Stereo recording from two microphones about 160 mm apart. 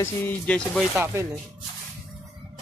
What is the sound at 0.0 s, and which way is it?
Speech, 10° left (ahead or behind).